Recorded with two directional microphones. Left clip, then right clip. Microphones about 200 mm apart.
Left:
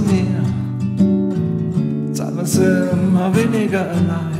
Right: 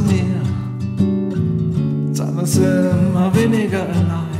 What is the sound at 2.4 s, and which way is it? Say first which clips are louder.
Music: even; centre (ahead or behind).